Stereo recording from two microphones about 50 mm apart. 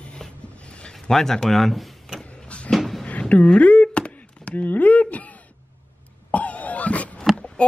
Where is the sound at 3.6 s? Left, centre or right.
Left.